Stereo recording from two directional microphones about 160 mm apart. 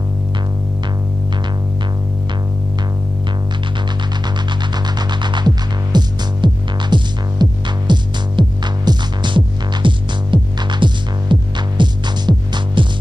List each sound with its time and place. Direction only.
5.2 s throbbing: 30° right (ahead or behind)
5.9 s music: 25° right (ahead or behind)